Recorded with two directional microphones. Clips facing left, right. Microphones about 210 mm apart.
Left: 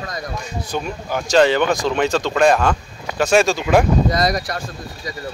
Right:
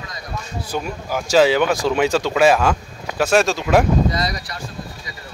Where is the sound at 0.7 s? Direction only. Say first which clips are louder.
Even; 5° right (ahead or behind).